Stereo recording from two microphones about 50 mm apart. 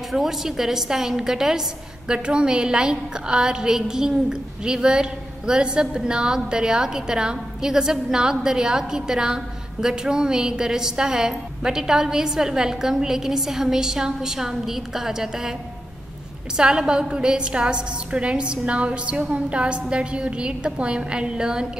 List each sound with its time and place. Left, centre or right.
0.1 s a woman's voice: centre
16.5 s a woman's voice: centre